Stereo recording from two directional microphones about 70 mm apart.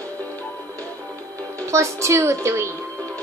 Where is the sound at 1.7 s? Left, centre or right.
Right.